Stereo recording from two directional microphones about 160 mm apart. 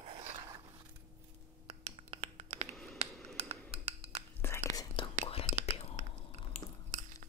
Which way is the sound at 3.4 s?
40° right (ahead or behind).